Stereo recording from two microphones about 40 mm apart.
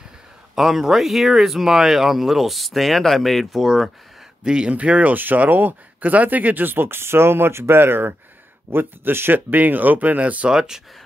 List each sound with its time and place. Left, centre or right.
0.6 s speech: centre
4.5 s speech: right
4.7 s speech: right
10.5 s speech: centre